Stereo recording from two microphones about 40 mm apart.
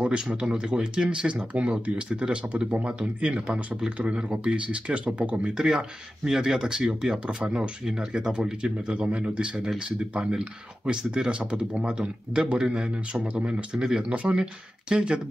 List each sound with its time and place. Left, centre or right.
0.0 s a man's voice: right
5.6 s a man's voice: centre; by 14.3 s right
14.3 s a man's voice: right